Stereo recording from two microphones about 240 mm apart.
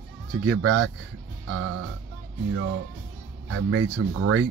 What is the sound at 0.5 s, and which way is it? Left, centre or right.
Speech, right.